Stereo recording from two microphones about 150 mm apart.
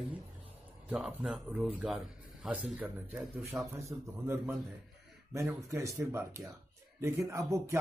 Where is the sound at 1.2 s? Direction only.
Centre (ahead or behind).